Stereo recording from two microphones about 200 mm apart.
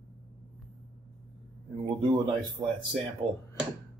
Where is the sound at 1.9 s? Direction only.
25° right (ahead or behind).